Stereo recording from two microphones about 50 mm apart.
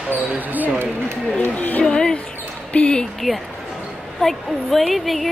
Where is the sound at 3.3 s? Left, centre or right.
Centre.